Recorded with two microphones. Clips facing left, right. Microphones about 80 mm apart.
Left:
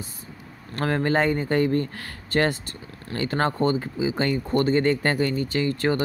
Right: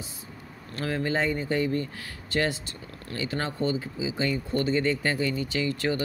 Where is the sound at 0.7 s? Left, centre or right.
Left.